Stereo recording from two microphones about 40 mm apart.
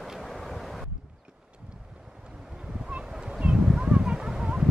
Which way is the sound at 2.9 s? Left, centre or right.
Right.